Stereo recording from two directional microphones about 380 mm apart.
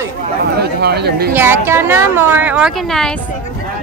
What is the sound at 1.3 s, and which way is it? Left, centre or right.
Speech, centre.